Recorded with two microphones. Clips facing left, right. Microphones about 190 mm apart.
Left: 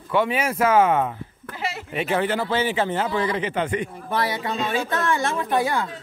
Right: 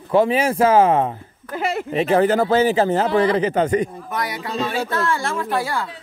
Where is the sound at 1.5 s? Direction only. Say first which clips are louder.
Right 8 dB; 55° right (ahead or behind).